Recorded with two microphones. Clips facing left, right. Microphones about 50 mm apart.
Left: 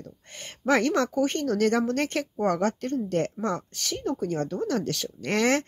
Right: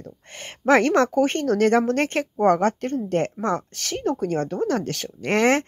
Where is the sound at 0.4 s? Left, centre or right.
Right.